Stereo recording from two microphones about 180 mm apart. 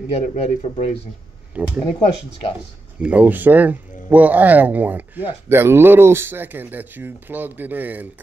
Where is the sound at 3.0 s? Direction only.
10° right (ahead or behind).